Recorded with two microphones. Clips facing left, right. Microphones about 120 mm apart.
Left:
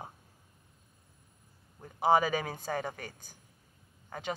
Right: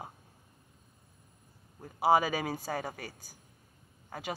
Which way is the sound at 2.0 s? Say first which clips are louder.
Even; 10° right (ahead or behind).